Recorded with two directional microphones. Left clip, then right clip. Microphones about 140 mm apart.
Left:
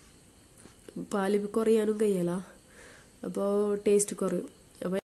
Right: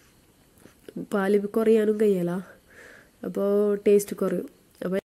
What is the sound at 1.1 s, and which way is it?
Speech, 20° right (ahead or behind).